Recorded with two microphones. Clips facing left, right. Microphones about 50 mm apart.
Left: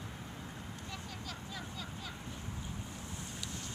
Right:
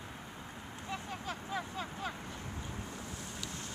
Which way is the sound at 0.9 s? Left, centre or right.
Right.